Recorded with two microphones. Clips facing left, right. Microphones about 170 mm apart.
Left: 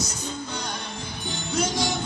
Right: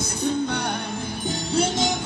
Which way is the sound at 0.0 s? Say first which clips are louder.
Right 8 dB; 60° right (ahead or behind).